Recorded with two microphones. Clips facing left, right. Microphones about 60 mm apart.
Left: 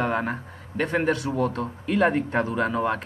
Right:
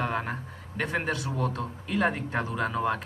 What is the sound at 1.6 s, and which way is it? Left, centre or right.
Speech, centre.